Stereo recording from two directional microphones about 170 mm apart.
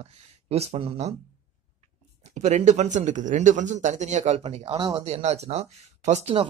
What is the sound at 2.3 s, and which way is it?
A man's voice, 45° right (ahead or behind).